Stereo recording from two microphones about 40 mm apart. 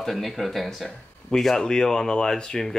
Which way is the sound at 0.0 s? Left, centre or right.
Centre.